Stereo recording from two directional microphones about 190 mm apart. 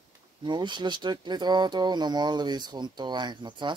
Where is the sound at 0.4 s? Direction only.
25° right (ahead or behind).